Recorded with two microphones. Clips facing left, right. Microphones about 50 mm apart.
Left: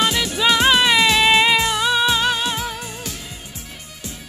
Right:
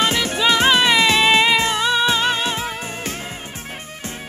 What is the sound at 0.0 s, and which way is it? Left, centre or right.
Music, right.